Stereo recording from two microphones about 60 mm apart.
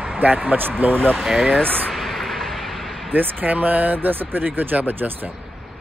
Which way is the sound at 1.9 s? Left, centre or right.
Centre.